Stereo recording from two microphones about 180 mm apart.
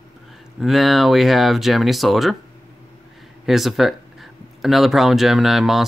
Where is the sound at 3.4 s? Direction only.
Centre (ahead or behind).